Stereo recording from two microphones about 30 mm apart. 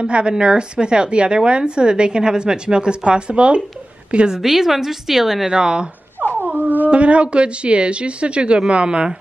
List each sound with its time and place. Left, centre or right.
0.0 s a woman's voice: right
4.4 s a woman's voice: centre
5.5 s speech: right
6.2 s dog: right
6.9 s a woman's voice: right